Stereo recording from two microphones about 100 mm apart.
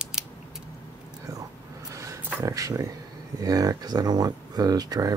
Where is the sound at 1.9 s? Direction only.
30° right (ahead or behind).